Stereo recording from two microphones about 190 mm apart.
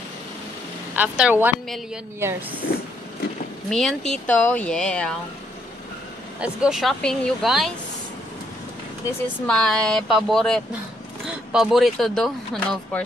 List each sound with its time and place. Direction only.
0.9 s a woman's voice: 5° right (ahead or behind)
2.6 s speech: 60° left (ahead or behind)
3.7 s speech: centre (ahead or behind)
6.4 s speech: 5° right (ahead or behind)
9.5 s speech: 5° left (ahead or behind)